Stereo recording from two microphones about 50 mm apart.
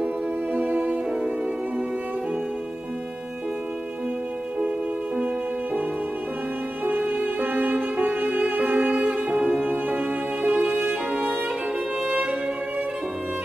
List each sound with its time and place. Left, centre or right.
0.0 s music: right
4.6 s music: right
6.8 s music: right; by 9.7 s centre
9.7 s music: right